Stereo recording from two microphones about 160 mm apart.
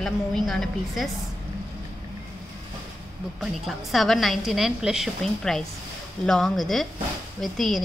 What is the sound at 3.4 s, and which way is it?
A woman's voice, centre (ahead or behind).